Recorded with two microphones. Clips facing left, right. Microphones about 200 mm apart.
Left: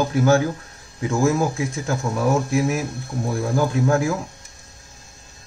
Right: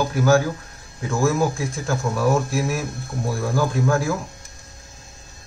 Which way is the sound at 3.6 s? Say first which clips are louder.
Left 2 dB; 20° left (ahead or behind).